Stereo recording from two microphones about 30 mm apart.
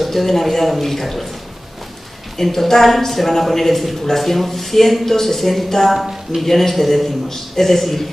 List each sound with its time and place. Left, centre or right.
0.0 s a man's voice: centre
2.3 s a man's voice: centre